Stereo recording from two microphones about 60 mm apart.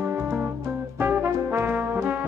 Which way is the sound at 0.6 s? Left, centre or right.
Right.